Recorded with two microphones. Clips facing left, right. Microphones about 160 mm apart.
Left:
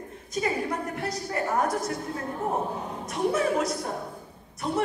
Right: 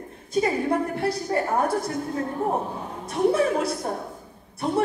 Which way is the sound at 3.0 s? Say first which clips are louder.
Right 5 dB; 30° right (ahead or behind).